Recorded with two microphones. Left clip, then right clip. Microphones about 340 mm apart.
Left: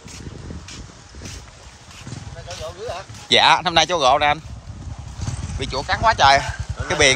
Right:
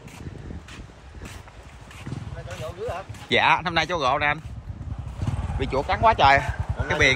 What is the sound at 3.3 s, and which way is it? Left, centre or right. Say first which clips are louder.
Speech: left 6 dB; centre.